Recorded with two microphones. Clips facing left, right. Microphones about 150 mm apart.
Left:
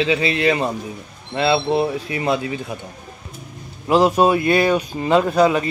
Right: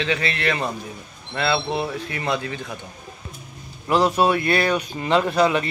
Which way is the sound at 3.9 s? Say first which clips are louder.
Left 4 dB; 10° left (ahead or behind).